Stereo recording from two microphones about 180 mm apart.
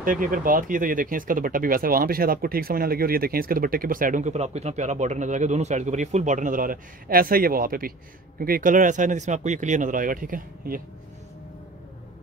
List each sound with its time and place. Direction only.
0.0 s speech: 50° right (ahead or behind)